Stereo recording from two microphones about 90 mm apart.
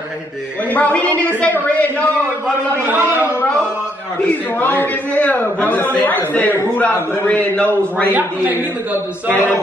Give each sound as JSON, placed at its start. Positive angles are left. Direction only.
{"t": 0.7, "sound": "a man's voice", "side_deg": 15}
{"t": 2.9, "sound": "a man's voice", "side_deg": -20}
{"t": 4.2, "sound": "a man's voice", "side_deg": 25}